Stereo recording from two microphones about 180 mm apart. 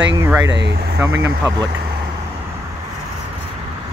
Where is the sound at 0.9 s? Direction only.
15° right (ahead or behind).